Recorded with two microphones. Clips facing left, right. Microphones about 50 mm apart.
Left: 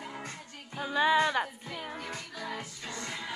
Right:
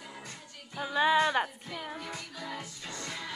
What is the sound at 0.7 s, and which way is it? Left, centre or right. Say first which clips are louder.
Speech: even; centre.